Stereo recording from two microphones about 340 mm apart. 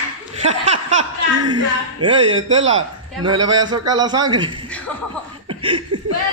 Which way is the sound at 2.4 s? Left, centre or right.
Right.